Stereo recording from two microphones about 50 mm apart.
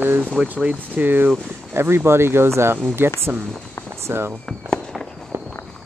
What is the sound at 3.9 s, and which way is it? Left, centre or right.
Fireworks, right.